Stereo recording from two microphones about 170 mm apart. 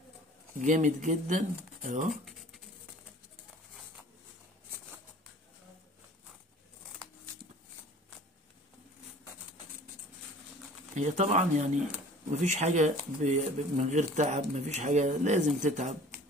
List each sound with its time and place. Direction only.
0.6 s speech: 45° right (ahead or behind)
2.0 s a sound: centre (ahead or behind)
11.0 s speech: 40° right (ahead or behind)